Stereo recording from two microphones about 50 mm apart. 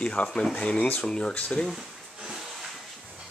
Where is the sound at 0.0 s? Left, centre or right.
Left.